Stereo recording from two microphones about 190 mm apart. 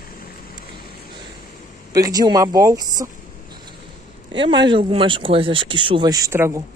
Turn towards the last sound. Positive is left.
turn(degrees=-15)  # may be behind; listen again after turning